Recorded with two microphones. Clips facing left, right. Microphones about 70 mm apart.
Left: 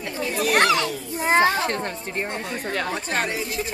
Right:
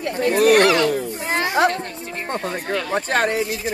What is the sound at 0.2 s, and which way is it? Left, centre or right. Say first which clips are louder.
Speech: right 9 dB; right.